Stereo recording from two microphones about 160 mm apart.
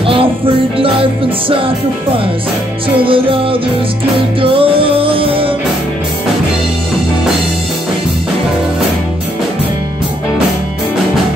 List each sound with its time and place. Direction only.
0.0 s music: 35° right (ahead or behind)
3.0 s music: 35° right (ahead or behind)
4.4 s music: 35° right (ahead or behind)